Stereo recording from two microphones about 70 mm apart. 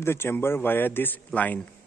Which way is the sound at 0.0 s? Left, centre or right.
Left.